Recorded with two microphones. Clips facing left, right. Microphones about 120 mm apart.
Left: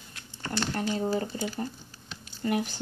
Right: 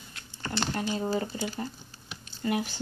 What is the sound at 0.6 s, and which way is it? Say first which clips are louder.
Speech: left 1 dB; 20° right (ahead or behind).